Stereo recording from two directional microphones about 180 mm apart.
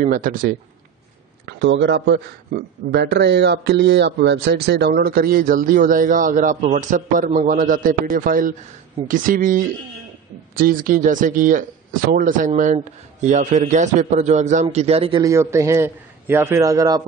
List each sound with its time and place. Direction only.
0.0 s speech: 50° right (ahead or behind)
1.4 s a man's voice: 75° right (ahead or behind); by 15.2 s 30° right (ahead or behind)
15.2 s a man's voice: 15° right (ahead or behind)